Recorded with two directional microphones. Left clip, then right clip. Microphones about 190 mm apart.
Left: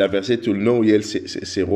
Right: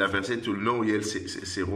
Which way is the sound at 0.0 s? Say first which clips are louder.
Left 8 dB; 25° left (ahead or behind).